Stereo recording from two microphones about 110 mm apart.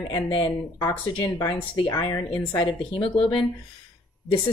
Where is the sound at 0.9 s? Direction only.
15° left (ahead or behind).